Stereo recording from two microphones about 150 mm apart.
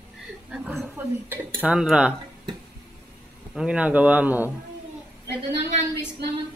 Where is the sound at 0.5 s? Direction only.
5° right (ahead or behind).